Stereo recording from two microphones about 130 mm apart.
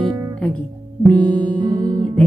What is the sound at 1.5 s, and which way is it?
Music, 35° right (ahead or behind).